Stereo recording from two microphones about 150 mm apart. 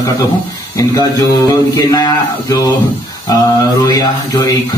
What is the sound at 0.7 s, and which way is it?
A man's voice, 25° left (ahead or behind).